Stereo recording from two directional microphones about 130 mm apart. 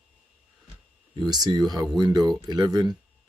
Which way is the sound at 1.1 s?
30° right (ahead or behind).